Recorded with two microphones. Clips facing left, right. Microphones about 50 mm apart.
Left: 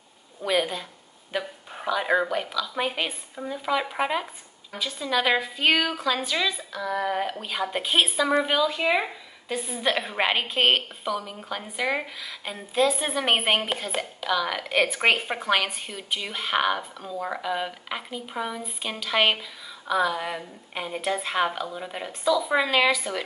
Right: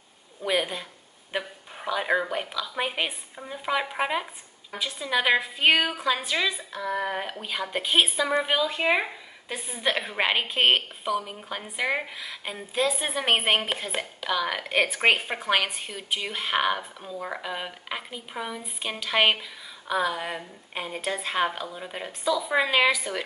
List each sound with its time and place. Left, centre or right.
0.4 s a woman's voice: centre
1.9 s a woman's voice: centre